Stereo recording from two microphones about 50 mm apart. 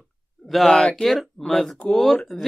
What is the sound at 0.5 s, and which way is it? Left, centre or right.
Speech, centre.